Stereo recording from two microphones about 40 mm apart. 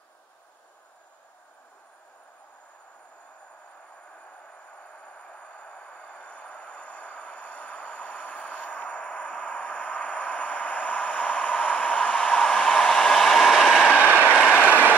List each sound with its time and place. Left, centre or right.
5.0 s train: left; by 13.8 s centre
13.8 s train: left